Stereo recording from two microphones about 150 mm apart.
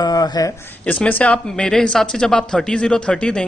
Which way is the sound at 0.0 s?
25° left (ahead or behind).